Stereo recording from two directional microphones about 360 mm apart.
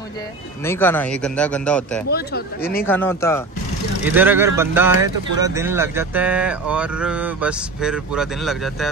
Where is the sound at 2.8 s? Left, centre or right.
Centre.